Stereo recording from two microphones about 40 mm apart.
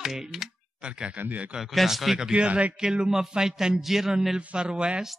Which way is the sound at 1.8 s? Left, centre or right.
Centre.